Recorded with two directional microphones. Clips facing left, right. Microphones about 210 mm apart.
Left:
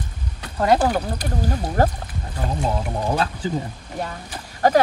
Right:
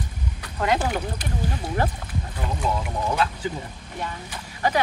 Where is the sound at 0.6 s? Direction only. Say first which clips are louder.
Left 6 dB; 40° left (ahead or behind).